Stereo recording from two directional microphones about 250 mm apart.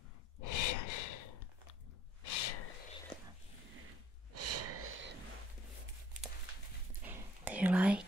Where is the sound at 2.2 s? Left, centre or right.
Left.